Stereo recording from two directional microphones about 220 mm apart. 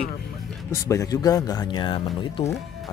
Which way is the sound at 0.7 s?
15° left (ahead or behind).